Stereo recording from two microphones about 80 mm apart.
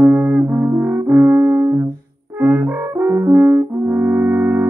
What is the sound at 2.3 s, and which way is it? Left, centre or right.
French horn, right.